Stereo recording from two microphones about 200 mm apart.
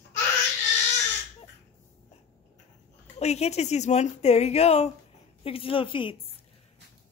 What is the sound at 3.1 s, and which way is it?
Speech, 30° left (ahead or behind).